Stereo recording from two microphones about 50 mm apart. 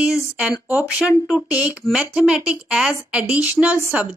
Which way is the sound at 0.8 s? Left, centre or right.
Right.